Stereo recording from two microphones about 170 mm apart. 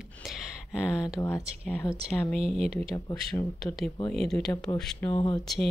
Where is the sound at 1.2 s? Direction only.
20° left (ahead or behind); by 4.5 s 5° left (ahead or behind).